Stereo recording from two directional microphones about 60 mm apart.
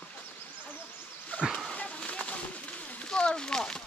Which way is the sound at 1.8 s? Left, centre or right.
Left.